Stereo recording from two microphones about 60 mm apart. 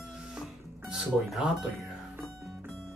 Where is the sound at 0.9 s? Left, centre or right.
Centre.